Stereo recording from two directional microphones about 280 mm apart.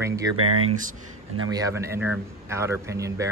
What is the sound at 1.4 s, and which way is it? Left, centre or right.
Speech, centre.